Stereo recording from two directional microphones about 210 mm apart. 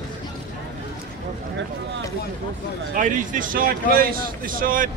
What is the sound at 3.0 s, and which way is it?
Speech, 40° right (ahead or behind).